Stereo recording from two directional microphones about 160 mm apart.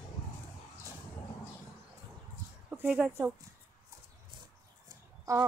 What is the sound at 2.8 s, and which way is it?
Speech, 10° right (ahead or behind).